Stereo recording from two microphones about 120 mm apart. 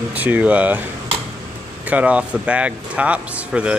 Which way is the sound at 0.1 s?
15° right (ahead or behind).